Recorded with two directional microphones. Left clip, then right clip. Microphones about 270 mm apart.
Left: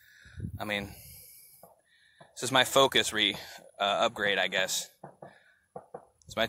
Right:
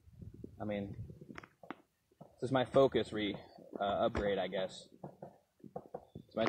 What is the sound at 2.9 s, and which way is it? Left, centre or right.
Speech, left.